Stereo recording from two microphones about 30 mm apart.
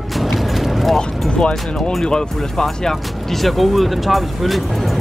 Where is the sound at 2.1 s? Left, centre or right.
Left.